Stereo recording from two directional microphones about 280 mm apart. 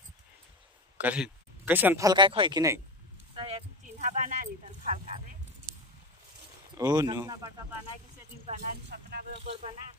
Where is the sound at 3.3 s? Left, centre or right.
Centre.